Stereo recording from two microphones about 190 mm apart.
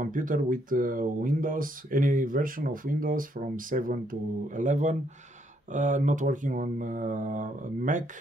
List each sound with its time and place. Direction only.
0.0 s speech: 45° right (ahead or behind)